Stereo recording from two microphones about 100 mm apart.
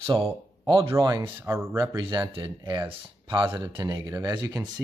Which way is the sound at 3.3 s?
30° right (ahead or behind).